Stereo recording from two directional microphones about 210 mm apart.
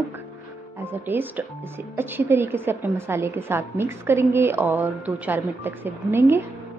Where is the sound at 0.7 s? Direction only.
10° right (ahead or behind).